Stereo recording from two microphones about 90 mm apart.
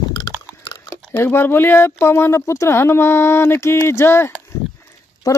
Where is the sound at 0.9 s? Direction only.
25° left (ahead or behind).